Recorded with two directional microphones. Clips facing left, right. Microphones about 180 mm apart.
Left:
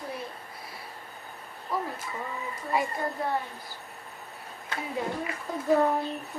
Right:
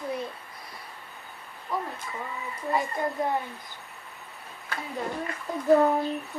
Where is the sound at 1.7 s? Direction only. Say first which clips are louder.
Even; centre (ahead or behind).